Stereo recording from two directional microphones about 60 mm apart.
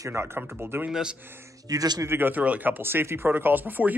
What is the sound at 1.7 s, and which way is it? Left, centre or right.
Speech, right.